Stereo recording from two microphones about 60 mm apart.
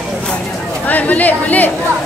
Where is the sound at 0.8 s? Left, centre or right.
Left.